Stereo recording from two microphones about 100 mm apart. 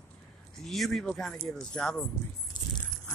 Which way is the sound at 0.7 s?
Centre (ahead or behind).